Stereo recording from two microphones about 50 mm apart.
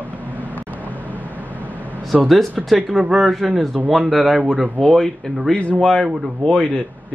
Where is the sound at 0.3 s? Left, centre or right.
Right.